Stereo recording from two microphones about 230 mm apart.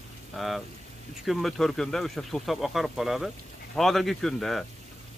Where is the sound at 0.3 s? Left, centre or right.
Centre.